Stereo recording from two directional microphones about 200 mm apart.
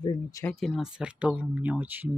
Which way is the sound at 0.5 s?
Centre (ahead or behind).